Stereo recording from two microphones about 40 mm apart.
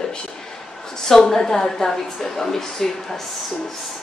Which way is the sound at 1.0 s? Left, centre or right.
Centre.